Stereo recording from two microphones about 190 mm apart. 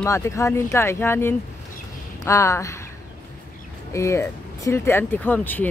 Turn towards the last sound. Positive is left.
turn(degrees=10)  # may be behind; listen again after turning